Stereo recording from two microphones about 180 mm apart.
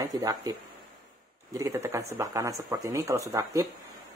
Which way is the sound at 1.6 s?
15° right (ahead or behind).